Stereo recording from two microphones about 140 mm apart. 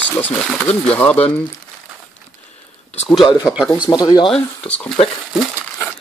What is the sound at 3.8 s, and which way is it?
Speech, 30° left (ahead or behind).